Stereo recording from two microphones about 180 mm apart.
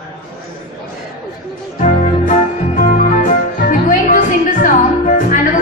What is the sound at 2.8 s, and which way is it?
Music, 45° left (ahead or behind).